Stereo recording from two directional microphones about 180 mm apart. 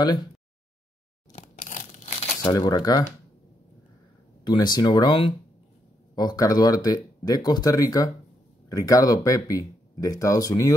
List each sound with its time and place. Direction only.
0.0 s speech: 25° left (ahead or behind)
1.3 s tearing: 40° left (ahead or behind)
2.4 s speech: 20° left (ahead or behind)
4.5 s speech: 25° left (ahead or behind)